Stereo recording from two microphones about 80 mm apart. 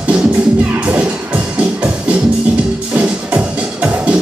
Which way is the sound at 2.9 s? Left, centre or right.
Centre.